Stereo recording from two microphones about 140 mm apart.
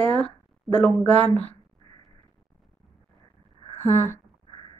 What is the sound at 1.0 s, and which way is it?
Speech, 50° right (ahead or behind).